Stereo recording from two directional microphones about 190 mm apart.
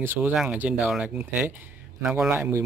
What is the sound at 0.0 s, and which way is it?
Speech, 10° right (ahead or behind).